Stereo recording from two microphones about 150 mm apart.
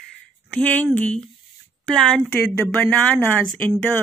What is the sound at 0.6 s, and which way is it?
Speech, 10° left (ahead or behind).